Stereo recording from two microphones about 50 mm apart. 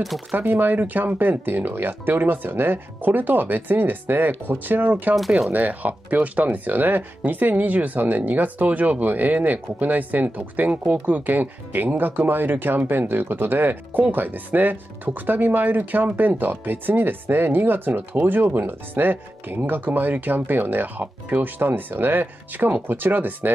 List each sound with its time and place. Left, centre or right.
0.5 s speech: right
5.1 s speech: centre
5.5 s speech: right